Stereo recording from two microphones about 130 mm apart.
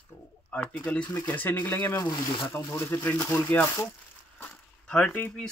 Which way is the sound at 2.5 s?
25° left (ahead or behind).